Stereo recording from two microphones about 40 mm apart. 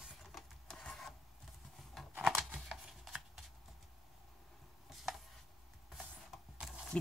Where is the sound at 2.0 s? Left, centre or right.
Centre.